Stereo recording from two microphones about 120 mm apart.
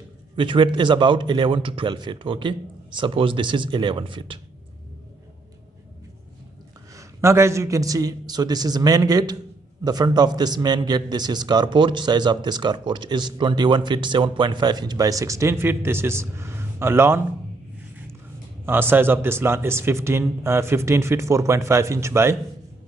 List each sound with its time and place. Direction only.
0.4 s a man's voice: 45° right (ahead or behind)
7.0 s a man's voice: 25° right (ahead or behind)
18.7 s speech: 20° right (ahead or behind)